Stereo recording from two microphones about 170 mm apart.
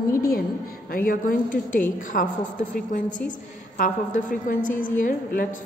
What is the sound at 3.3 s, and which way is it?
A woman's voice, 50° left (ahead or behind).